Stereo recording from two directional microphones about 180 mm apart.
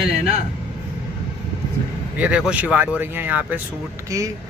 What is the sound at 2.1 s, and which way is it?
Speech, 5° right (ahead or behind).